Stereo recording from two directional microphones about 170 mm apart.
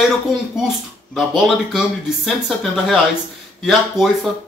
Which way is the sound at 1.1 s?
5° right (ahead or behind).